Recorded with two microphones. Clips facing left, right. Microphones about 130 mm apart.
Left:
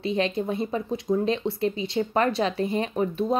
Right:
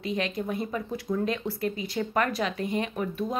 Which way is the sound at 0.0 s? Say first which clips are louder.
Left 5 dB; 30° left (ahead or behind).